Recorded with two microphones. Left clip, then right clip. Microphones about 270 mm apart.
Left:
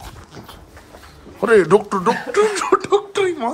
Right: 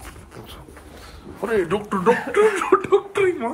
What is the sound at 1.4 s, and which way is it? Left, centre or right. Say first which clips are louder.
Speech: left 8 dB; left.